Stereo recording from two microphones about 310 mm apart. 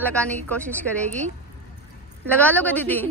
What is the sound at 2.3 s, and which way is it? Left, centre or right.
Speech, centre.